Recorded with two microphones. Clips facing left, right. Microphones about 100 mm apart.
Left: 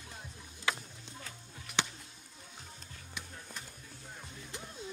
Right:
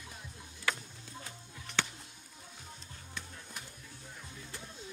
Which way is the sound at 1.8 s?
15° left (ahead or behind).